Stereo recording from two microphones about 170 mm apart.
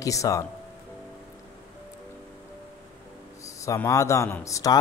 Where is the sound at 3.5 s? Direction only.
20° left (ahead or behind).